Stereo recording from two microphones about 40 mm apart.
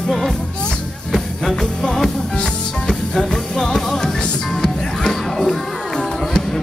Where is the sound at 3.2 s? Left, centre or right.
Centre.